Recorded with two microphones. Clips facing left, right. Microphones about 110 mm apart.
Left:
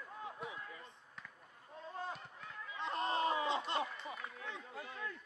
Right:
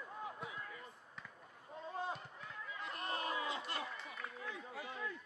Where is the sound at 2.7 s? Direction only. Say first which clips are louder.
Left 7 dB; 25° left (ahead or behind).